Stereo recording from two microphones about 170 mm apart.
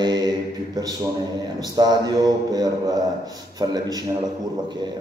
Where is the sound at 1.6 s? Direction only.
25° right (ahead or behind).